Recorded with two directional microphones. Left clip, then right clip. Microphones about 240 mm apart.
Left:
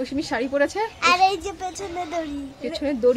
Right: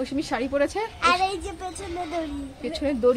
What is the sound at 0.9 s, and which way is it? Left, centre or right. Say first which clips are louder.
Speech: left 4 dB; centre.